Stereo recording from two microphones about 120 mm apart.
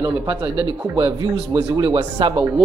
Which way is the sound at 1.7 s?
40° right (ahead or behind).